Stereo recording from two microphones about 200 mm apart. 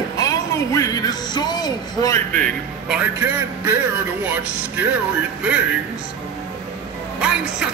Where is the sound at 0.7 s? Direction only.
15° left (ahead or behind).